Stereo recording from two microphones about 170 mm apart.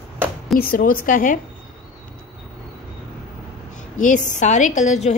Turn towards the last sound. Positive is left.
turn(degrees=40)  # may be behind; listen again after turning